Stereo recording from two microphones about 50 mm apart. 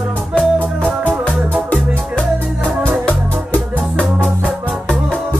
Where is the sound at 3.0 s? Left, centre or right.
Left.